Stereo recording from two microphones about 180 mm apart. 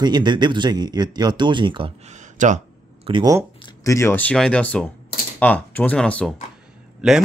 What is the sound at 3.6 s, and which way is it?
A man's voice, 15° left (ahead or behind).